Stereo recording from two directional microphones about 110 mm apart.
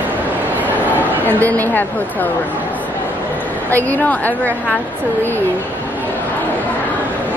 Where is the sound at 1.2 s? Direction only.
15° left (ahead or behind).